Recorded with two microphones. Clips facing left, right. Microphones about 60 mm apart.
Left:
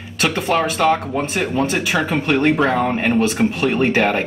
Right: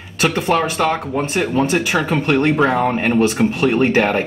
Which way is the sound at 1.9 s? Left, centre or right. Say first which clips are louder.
Right 1 dB; centre.